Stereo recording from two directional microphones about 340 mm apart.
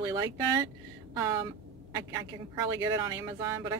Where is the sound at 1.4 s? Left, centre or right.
Centre.